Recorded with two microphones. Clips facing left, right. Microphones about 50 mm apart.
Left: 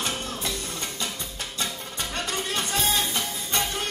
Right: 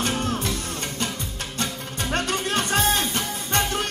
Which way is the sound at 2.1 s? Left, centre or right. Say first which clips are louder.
Right 5 dB; right.